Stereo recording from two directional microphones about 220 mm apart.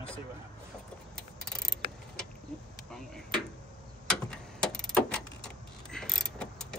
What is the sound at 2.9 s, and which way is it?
Speech, centre (ahead or behind).